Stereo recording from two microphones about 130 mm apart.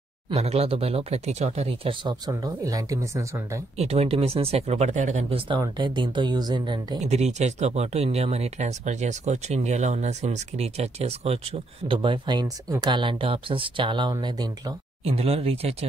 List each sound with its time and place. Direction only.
0.3 s speech: 50° right (ahead or behind)
2.0 s speech: 30° right (ahead or behind)
3.7 s speech: 50° right (ahead or behind)
5.6 s speech: 35° right (ahead or behind)
7.0 s speech: 60° right (ahead or behind)
11.9 s speech: 40° right (ahead or behind)
15.0 s speech: 50° right (ahead or behind)